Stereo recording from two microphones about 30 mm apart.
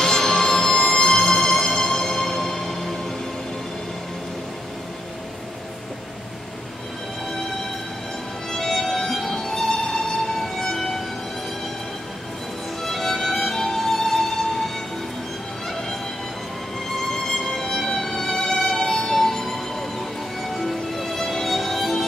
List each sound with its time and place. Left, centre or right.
0.0 s music: centre
8.5 s music: centre
9.1 s music: centre
9.5 s music: centre
12.8 s music: centre
17.1 s music: centre
20.5 s music: centre